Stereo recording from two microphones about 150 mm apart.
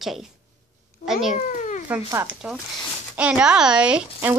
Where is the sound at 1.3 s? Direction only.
55° left (ahead or behind).